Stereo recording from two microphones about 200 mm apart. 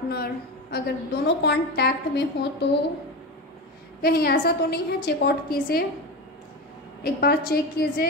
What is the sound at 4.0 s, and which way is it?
A woman's voice, 50° left (ahead or behind).